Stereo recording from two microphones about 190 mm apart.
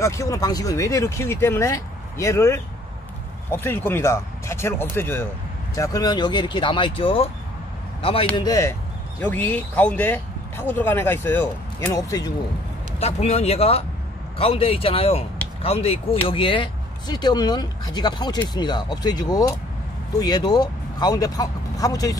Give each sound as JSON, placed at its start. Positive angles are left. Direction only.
{"t": 0.0, "sound": "a man's voice", "side_deg": 15}
{"t": 8.4, "sound": "speech", "side_deg": 15}
{"t": 13.0, "sound": "speech", "side_deg": 35}